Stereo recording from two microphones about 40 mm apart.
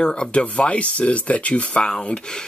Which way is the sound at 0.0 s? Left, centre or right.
Left.